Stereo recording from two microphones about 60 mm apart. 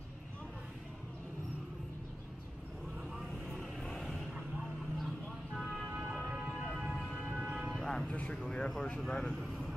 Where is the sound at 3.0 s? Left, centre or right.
Centre.